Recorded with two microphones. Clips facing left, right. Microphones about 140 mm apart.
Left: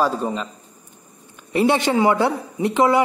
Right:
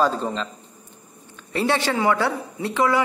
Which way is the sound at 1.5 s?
15° left (ahead or behind).